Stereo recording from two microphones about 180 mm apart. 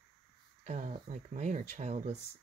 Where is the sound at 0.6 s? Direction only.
40° right (ahead or behind).